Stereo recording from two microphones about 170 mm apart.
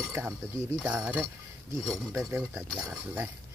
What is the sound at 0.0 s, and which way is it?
Speech, 15° right (ahead or behind).